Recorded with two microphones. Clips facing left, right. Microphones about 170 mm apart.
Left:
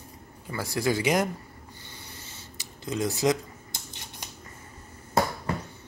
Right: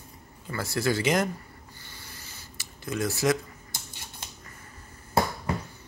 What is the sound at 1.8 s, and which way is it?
Writing, 20° left (ahead or behind).